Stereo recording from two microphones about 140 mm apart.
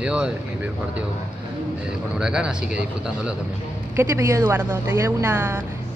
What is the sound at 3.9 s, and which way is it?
Speech, 20° right (ahead or behind).